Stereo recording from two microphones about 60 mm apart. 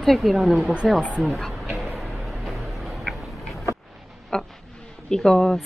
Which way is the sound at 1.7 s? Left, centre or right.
Centre.